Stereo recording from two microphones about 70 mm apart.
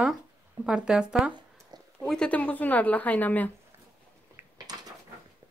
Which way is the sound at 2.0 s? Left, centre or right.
Centre.